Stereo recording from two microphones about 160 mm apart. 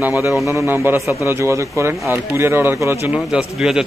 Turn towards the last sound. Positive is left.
turn(degrees=-5)  # may be behind; listen again after turning